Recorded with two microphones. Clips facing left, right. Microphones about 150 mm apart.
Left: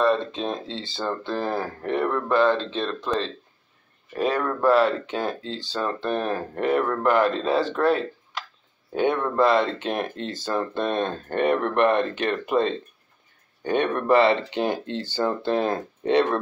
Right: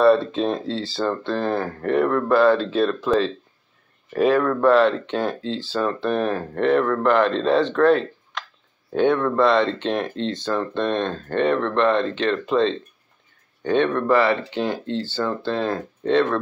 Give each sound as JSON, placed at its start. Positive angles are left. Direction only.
{"t": 0.0, "sound": "speech", "side_deg": -5}